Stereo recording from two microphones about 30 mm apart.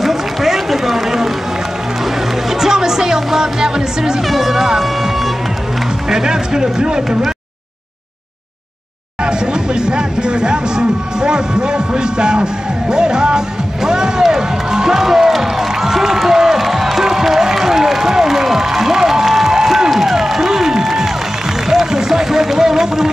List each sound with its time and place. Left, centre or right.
0.0 s run: centre
2.5 s music: centre
4.3 s music: centre
6.0 s speech: right
9.2 s speech: right
13.8 s music: right
16.3 s crowd: centre
19.2 s a sound: centre
20.0 s music: centre
21.6 s run: centre